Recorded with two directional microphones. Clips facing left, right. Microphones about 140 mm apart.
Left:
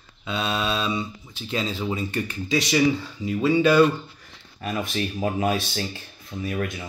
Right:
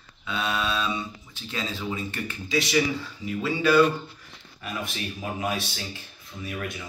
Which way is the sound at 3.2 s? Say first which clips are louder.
Left 5 dB; 20° left (ahead or behind).